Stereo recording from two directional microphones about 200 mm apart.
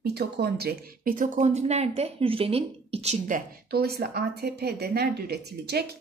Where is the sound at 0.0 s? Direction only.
55° right (ahead or behind).